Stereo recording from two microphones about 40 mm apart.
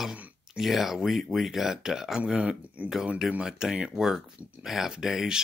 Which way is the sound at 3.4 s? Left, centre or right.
Centre.